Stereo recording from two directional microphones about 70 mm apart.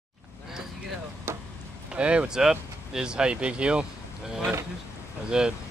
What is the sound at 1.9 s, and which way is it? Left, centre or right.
Speech, centre.